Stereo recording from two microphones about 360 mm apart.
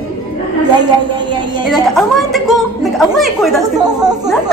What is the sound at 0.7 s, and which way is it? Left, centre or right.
Speech, centre.